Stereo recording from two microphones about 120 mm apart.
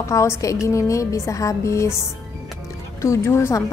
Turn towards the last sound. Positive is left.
turn(degrees=20)  # may be behind; listen again after turning